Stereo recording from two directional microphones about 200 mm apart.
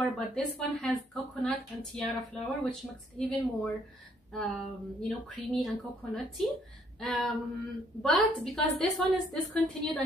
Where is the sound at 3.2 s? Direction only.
5° left (ahead or behind).